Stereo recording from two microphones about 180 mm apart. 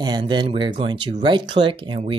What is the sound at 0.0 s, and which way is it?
Speech, 25° right (ahead or behind).